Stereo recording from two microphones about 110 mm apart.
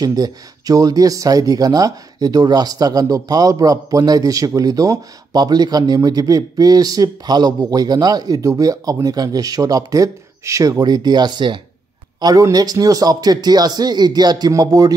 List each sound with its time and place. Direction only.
0.0 s speech: 35° right (ahead or behind)
12.2 s speech: 35° right (ahead or behind)